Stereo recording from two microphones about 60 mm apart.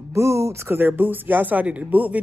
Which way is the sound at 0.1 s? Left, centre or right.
Right.